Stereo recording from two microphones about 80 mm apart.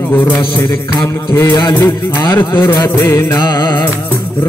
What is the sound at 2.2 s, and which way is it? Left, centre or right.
A man's voice, left.